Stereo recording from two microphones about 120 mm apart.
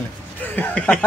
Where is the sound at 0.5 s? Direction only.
10° left (ahead or behind).